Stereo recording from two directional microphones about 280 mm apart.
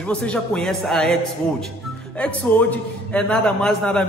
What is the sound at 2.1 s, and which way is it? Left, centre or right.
A man's voice, centre.